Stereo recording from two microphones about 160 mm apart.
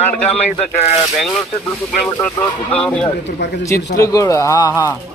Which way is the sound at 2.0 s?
10° left (ahead or behind).